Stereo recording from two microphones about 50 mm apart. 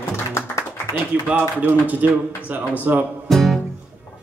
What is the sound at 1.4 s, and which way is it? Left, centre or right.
A man's voice, right.